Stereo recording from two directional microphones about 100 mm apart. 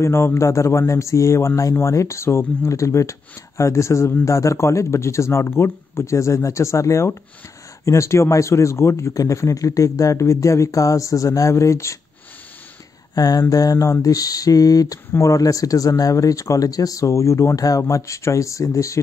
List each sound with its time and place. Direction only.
0.0 s speech: 25° left (ahead or behind)
13.1 s speech: 40° left (ahead or behind)